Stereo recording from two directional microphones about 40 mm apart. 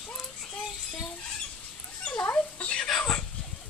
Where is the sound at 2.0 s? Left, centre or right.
Left.